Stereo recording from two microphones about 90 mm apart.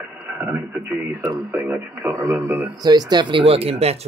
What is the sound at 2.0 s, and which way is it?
Speech, 35° right (ahead or behind).